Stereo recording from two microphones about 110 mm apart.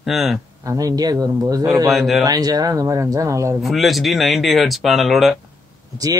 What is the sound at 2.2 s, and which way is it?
Speech, 35° right (ahead or behind).